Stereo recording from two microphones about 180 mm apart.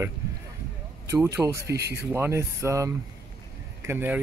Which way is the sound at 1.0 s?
15° right (ahead or behind).